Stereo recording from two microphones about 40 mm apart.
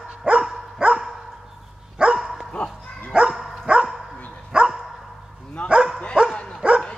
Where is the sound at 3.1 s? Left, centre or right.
Right.